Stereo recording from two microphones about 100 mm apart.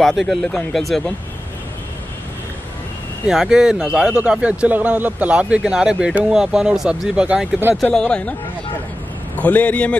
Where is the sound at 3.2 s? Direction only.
5° right (ahead or behind).